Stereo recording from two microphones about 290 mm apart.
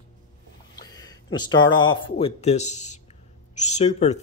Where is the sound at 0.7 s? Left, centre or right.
Centre.